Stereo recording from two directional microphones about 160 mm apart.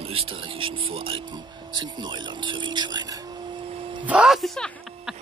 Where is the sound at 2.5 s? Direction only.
30° right (ahead or behind).